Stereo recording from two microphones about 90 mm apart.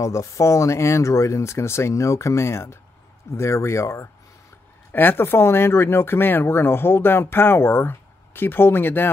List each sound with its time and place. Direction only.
0.0 s speech: 35° left (ahead or behind)